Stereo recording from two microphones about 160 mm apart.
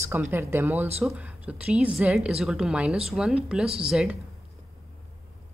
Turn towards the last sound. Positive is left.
turn(degrees=-5)  # may be behind; listen again after turning